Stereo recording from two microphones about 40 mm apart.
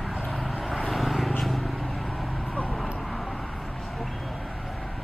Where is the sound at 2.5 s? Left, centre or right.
Left.